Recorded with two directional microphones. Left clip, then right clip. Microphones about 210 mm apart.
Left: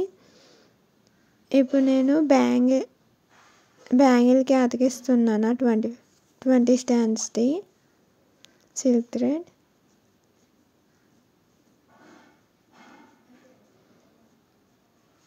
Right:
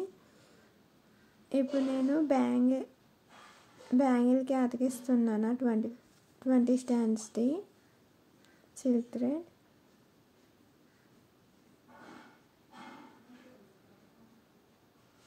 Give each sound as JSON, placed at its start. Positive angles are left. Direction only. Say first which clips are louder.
{"t": 1.5, "sound": "speech", "louder": "left 11 dB", "side_deg": 40}
{"t": 3.9, "sound": "a woman's voice", "louder": "left 10 dB", "side_deg": 40}